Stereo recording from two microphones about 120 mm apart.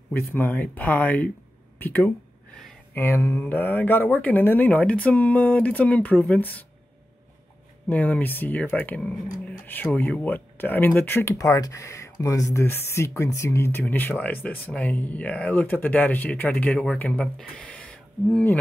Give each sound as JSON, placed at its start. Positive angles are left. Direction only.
{"t": 0.1, "sound": "speech", "side_deg": 15}
{"t": 7.9, "sound": "speech", "side_deg": 15}